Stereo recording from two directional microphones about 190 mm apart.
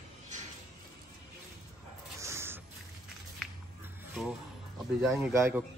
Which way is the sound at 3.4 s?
Centre (ahead or behind).